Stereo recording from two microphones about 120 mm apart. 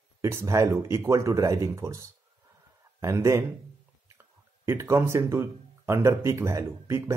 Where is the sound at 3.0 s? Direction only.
25° right (ahead or behind).